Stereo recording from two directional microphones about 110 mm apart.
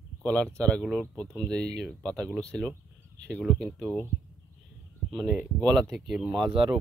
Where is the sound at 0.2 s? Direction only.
15° left (ahead or behind).